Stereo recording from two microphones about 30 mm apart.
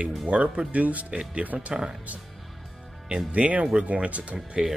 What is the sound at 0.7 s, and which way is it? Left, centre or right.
Speech, right.